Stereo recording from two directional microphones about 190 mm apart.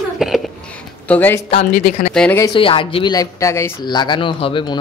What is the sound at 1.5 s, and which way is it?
Speech, 35° left (ahead or behind).